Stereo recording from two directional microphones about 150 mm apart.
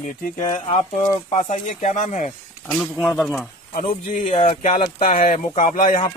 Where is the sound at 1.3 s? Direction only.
55° left (ahead or behind).